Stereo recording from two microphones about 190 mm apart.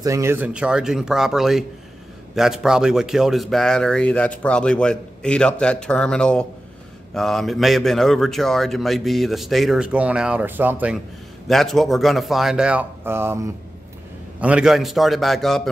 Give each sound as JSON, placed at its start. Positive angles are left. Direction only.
{"t": 0.0, "sound": "a man's voice", "side_deg": -15}